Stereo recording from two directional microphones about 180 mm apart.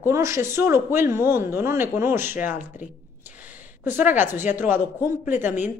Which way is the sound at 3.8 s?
10° right (ahead or behind).